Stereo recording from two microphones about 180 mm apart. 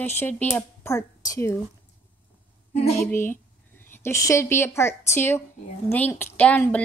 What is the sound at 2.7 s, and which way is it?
Speech, 35° left (ahead or behind).